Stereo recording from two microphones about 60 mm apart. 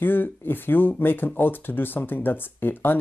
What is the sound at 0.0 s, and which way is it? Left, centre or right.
Speech, left.